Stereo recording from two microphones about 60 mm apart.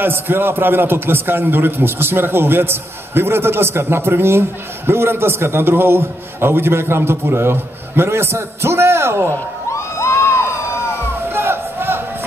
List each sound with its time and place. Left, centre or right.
0.0 s a man's voice: right
9.7 s crowd: left
11.3 s music: right